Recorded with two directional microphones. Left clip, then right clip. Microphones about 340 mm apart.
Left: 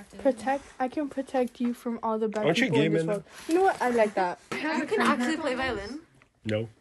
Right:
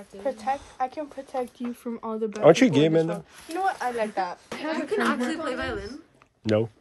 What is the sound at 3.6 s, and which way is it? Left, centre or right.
Speech, centre.